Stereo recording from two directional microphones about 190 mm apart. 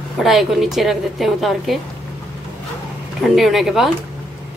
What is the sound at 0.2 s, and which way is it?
A woman's voice, centre (ahead or behind).